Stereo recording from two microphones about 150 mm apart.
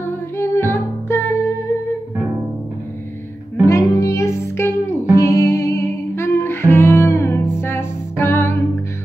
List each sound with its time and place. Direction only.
0.0 s music: 15° left (ahead or behind)
3.6 s music: 20° left (ahead or behind)